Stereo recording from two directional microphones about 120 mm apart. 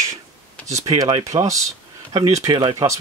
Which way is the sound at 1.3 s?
45° right (ahead or behind).